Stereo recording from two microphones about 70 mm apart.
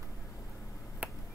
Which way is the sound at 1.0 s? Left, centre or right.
Right.